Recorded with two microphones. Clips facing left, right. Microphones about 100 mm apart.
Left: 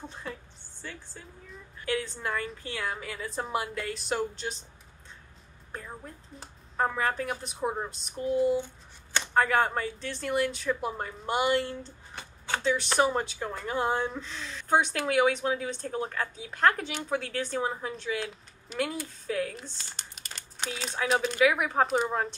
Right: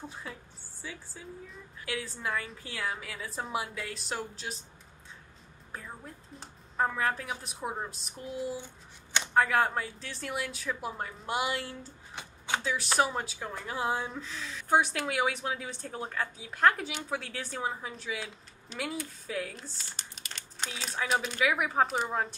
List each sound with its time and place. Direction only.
0.1 s a woman's voice: 5° right (ahead or behind)
5.7 s a woman's voice: centre (ahead or behind)
12.2 s a sound: 15° right (ahead or behind)
12.6 s a woman's voice: 5° right (ahead or behind)